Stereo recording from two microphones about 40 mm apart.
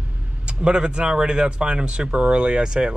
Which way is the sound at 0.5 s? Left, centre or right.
Right.